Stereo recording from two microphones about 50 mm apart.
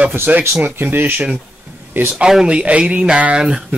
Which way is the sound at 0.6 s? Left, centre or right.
Right.